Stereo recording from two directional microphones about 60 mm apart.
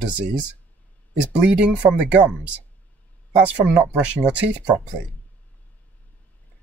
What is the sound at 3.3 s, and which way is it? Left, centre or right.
Speech, right.